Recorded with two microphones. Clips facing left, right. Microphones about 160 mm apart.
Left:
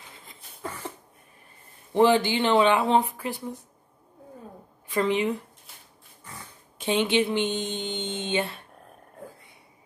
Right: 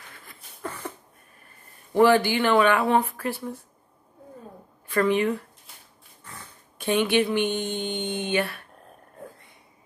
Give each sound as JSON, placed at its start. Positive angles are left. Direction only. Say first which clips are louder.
{"t": 0.1, "sound": "a sound", "louder": "even", "side_deg": 20}
{"t": 2.0, "sound": "speech", "louder": "right 2 dB", "side_deg": 20}
{"t": 4.8, "sound": "a woman's voice", "louder": "right 2 dB", "side_deg": 20}
{"t": 6.8, "sound": "speech", "louder": "right 1 dB", "side_deg": 20}